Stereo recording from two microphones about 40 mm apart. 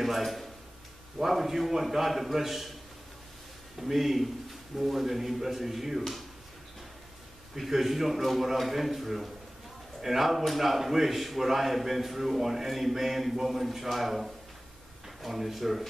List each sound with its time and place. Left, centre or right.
0.0 s a man's voice: centre
3.8 s speech: centre
7.5 s speech: centre